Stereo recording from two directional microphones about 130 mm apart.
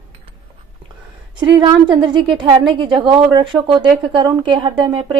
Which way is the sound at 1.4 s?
40° right (ahead or behind).